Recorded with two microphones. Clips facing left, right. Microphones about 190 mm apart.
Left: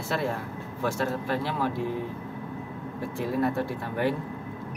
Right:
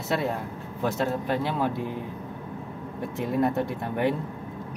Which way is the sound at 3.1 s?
20° right (ahead or behind).